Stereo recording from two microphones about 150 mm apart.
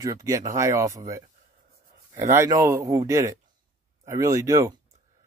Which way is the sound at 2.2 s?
20° right (ahead or behind).